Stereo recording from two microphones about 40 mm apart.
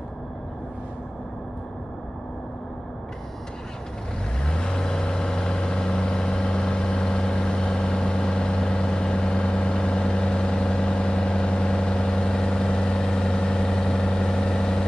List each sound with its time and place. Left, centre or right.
4.5 s vehicle: centre